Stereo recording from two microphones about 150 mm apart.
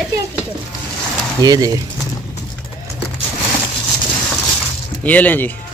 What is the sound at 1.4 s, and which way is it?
Speech, 25° right (ahead or behind).